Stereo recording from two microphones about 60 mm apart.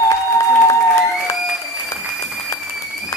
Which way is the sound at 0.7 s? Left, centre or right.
Left.